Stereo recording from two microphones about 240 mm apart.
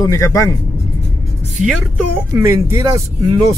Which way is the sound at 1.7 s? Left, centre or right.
Centre.